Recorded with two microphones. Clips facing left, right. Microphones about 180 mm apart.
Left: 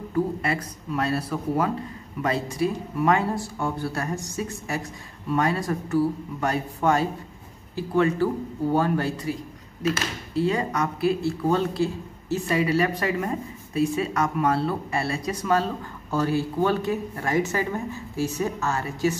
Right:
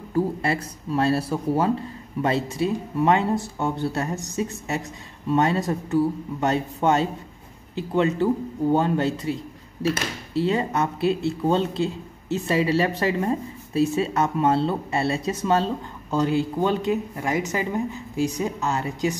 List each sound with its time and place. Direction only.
0.1 s speech: 30° right (ahead or behind)